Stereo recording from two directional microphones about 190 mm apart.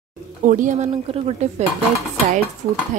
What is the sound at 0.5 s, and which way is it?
A woman's voice, 40° right (ahead or behind).